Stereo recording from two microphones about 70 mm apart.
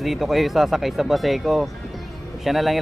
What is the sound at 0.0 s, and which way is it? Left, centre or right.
Speech, centre.